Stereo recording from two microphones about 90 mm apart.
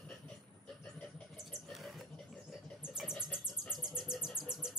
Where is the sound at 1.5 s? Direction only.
Centre (ahead or behind).